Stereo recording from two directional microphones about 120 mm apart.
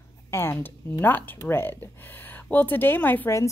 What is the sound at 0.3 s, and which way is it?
Speech, 20° left (ahead or behind).